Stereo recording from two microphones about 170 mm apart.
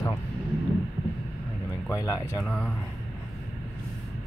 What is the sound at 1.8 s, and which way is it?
Speech, 20° left (ahead or behind).